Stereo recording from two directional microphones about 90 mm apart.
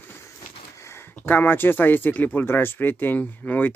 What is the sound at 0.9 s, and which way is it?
Speech, 20° left (ahead or behind).